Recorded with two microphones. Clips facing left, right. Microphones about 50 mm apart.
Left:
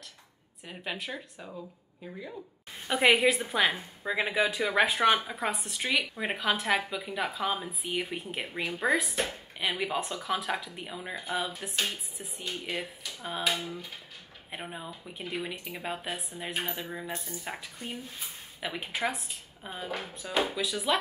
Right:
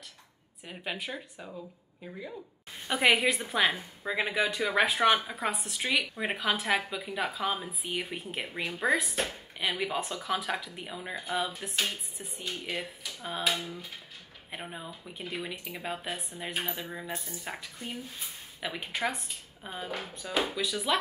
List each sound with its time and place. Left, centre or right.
0.7 s a woman's voice: centre